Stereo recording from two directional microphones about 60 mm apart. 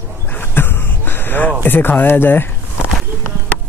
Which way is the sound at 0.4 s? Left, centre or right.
Left.